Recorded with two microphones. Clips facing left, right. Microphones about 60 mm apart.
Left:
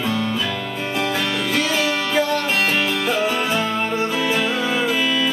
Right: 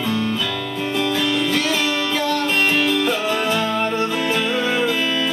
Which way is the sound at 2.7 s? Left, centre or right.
Left.